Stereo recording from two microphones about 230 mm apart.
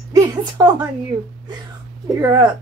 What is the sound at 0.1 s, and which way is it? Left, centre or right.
Speech, centre.